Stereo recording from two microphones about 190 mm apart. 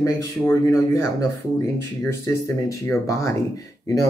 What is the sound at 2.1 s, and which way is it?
Speech, 15° left (ahead or behind).